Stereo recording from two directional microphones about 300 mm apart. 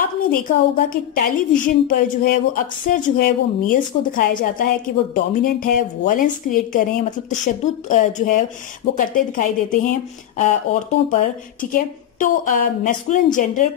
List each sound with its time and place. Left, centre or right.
0.3 s a woman's voice: left